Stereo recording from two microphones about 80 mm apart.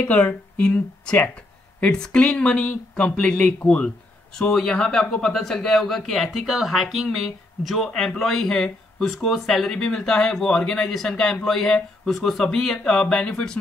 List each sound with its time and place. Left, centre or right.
0.1 s speech: centre
4.4 s speech: centre